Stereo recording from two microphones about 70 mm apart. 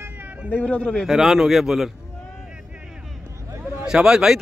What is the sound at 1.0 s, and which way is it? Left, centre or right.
Speech, centre.